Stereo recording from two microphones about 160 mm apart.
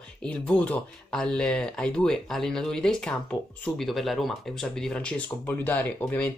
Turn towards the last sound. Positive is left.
turn(degrees=10)  # may be behind; listen again after turning